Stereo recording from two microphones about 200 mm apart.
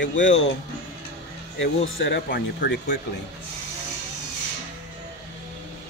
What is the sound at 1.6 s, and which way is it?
Speech, 70° left (ahead or behind).